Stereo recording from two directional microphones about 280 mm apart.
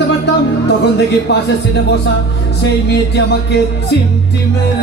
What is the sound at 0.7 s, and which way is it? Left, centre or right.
Speech, left.